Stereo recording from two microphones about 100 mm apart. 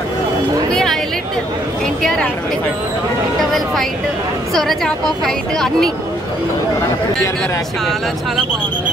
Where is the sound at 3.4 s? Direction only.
Centre (ahead or behind).